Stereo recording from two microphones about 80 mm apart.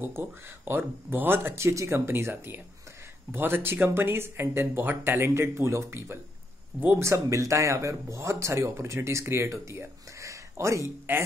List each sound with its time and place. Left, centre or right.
0.0 s speech: right
11.1 s speech: right